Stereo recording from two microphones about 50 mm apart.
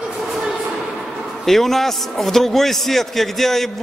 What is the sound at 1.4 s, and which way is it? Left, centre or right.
A man's voice, centre.